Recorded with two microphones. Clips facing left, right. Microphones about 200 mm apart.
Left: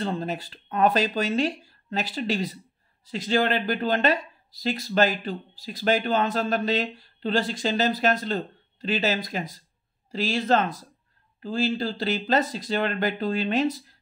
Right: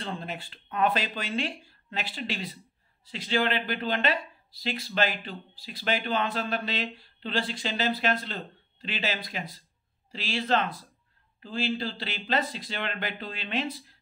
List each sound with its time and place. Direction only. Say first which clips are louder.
0.0 s speech: left 7 dB; 40° left (ahead or behind)